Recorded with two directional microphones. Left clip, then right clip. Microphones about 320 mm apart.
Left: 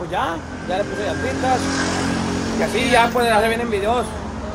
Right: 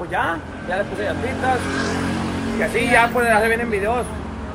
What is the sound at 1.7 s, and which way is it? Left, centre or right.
Vehicle, left.